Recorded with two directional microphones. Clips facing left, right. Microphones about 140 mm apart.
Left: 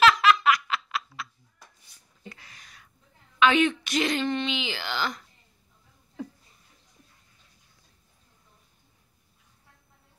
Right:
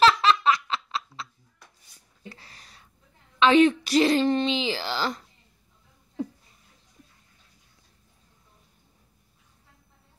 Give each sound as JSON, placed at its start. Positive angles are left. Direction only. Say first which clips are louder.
{"t": 0.0, "sound": "laughter", "louder": "even", "side_deg": -30}
{"t": 2.2, "sound": "a sound", "louder": "right 1 dB", "side_deg": -30}
{"t": 3.3, "sound": "a woman's voice", "louder": "right 4 dB", "side_deg": -35}